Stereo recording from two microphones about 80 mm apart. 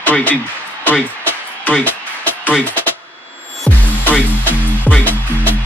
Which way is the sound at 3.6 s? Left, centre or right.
Centre.